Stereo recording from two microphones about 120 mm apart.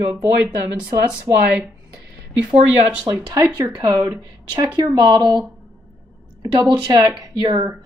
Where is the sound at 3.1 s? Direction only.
40° right (ahead or behind).